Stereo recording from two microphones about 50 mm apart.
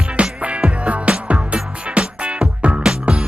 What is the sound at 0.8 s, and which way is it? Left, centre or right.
Music, right.